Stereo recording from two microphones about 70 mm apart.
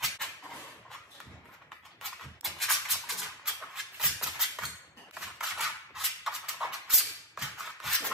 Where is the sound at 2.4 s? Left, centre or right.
Centre.